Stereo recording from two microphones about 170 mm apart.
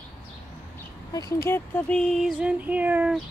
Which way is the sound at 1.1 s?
20° left (ahead or behind).